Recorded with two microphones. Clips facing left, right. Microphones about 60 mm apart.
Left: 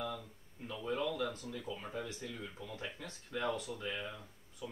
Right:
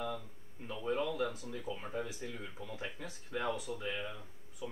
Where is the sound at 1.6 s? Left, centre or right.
Centre.